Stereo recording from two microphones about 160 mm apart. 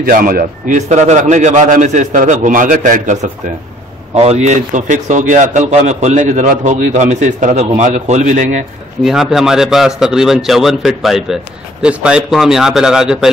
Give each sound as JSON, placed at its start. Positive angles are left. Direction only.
{"t": 0.0, "sound": "a man's voice", "side_deg": -65}
{"t": 4.1, "sound": "a man's voice", "side_deg": -40}
{"t": 9.0, "sound": "speech", "side_deg": 0}